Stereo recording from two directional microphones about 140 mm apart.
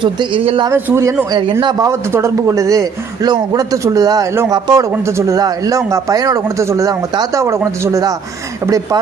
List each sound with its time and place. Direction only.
0.0 s speech: 35° right (ahead or behind)
0.7 s speech: 15° right (ahead or behind)
1.3 s speech: 30° right (ahead or behind)